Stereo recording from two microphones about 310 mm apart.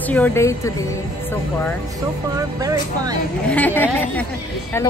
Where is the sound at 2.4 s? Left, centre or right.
Centre.